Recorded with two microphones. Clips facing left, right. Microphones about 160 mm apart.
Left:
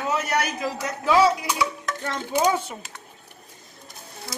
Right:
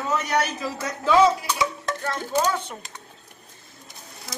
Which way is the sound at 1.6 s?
30° right (ahead or behind).